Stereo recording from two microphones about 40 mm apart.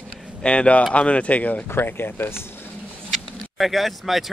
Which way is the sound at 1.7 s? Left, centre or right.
Left.